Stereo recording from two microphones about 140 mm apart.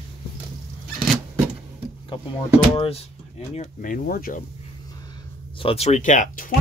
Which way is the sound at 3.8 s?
80° left.